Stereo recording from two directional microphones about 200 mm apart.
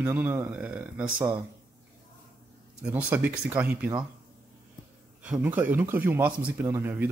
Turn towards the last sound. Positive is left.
turn(degrees=-10)  # may be behind; listen again after turning